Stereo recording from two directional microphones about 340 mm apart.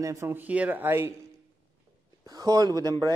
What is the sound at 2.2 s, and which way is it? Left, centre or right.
Speech, centre.